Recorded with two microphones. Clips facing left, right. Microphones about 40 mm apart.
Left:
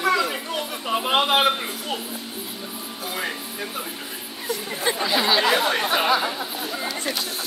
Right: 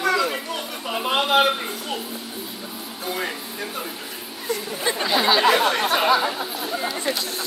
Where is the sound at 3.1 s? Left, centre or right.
Centre.